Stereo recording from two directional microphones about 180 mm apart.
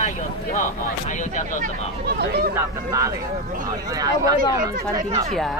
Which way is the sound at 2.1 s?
65° right (ahead or behind).